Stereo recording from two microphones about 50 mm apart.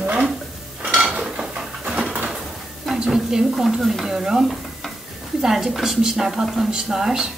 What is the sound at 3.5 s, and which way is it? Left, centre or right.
Stir, centre.